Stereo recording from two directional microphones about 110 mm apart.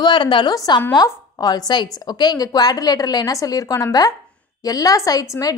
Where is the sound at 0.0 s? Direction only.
45° left (ahead or behind).